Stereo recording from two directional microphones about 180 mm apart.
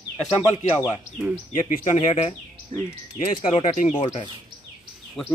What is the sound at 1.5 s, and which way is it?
Speech, 45° left (ahead or behind).